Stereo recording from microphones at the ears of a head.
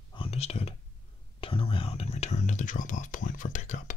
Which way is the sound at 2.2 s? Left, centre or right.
Left.